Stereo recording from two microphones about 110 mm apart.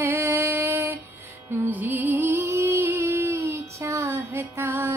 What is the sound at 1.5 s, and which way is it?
Music, 15° right (ahead or behind).